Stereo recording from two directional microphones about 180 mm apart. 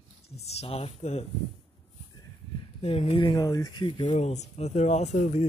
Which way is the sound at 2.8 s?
35° left (ahead or behind).